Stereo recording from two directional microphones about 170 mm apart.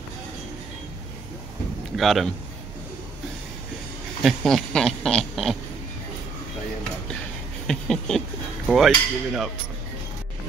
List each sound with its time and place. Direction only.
2.0 s speech: centre (ahead or behind)
4.2 s speech: centre (ahead or behind)
7.6 s a sound: centre (ahead or behind)
8.6 s speech: centre (ahead or behind)